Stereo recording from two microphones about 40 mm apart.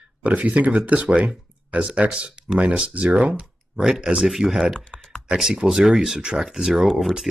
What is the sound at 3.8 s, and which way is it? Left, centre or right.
Speech, centre.